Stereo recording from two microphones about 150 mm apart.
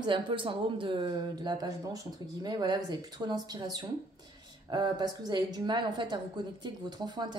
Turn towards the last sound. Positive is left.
turn(degrees=-30)  # may be behind; listen again after turning